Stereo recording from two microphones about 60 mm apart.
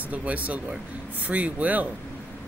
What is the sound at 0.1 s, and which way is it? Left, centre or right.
Speech, right.